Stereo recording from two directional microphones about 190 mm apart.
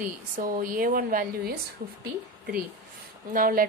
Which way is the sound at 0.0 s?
45° right (ahead or behind).